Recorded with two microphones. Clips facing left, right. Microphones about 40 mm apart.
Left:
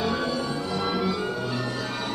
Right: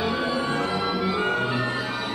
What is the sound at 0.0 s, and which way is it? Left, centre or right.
Music, centre.